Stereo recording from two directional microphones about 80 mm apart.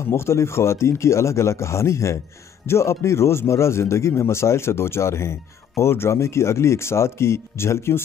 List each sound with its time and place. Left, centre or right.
0.1 s speech: left